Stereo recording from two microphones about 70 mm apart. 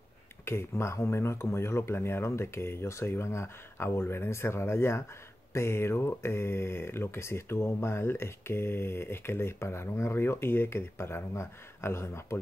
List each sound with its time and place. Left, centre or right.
0.5 s speech: left